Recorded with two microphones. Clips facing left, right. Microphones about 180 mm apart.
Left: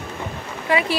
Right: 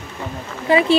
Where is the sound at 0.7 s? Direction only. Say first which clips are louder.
Right 6 dB; 25° right (ahead or behind).